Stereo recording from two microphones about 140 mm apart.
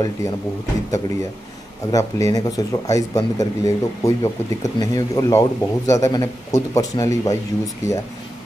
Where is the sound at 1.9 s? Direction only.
25° left (ahead or behind).